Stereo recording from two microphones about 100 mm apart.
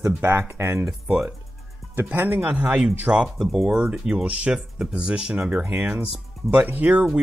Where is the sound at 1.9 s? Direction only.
20° right (ahead or behind).